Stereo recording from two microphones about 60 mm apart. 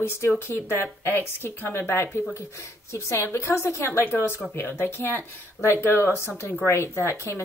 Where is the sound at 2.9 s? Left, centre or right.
Left.